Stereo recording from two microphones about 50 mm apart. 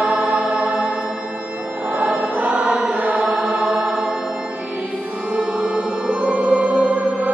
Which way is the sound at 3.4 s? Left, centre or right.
Centre.